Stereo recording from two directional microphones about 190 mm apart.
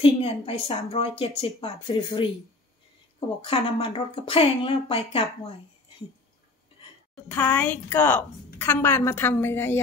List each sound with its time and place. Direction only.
0.0 s speech: 30° left (ahead or behind)
3.4 s speech: 30° left (ahead or behind)
7.2 s a woman's voice: 10° left (ahead or behind)